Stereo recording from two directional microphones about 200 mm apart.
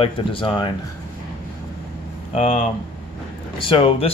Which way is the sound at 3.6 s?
25° left (ahead or behind).